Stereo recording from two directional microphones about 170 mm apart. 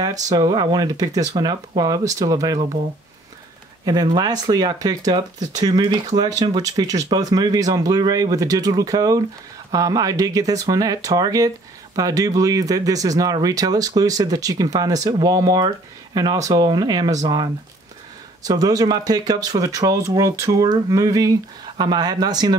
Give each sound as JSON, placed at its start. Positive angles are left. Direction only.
{"t": 0.0, "sound": "speech", "side_deg": -20}
{"t": 3.8, "sound": "speech", "side_deg": -25}